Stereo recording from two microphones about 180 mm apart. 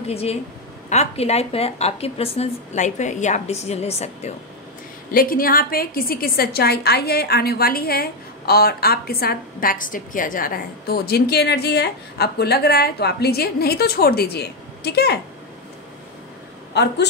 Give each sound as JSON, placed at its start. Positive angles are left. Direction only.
{"t": 0.1, "sound": "a woman's voice", "side_deg": 35}
{"t": 5.1, "sound": "a woman's voice", "side_deg": 55}
{"t": 16.7, "sound": "speech", "side_deg": 70}